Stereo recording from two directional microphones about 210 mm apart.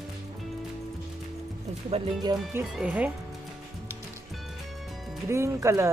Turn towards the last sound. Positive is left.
turn(degrees=-15)  # may be behind; listen again after turning